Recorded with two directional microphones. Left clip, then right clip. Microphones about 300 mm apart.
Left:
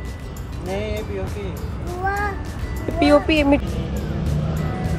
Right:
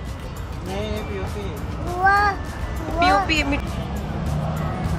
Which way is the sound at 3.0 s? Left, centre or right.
Centre.